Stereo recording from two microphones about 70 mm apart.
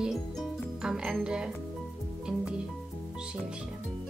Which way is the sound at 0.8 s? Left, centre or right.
Centre.